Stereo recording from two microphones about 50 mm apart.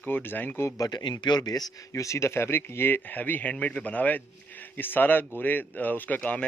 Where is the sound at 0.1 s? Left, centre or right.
Left.